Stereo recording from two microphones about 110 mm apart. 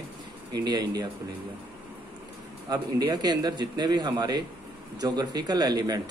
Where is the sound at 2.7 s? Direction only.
35° right (ahead or behind).